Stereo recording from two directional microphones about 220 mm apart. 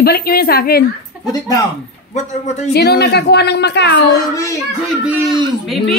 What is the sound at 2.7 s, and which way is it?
Speech, 50° left (ahead or behind).